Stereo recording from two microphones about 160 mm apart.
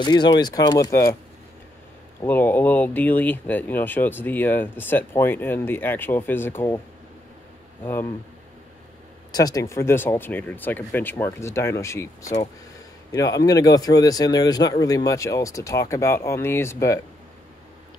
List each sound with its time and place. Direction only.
0.0 s speech: 25° left (ahead or behind)
2.2 s speech: 10° left (ahead or behind)
7.8 s speech: 15° left (ahead or behind)
9.3 s speech: 25° left (ahead or behind)